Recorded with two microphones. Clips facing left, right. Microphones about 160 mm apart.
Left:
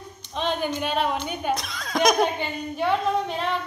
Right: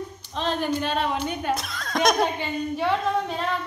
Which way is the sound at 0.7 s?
5° left (ahead or behind).